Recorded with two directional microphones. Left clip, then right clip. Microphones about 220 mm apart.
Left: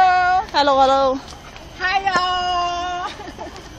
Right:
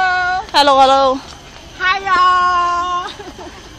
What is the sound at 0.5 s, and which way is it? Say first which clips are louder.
Speech: right 10 dB; 5° right (ahead or behind).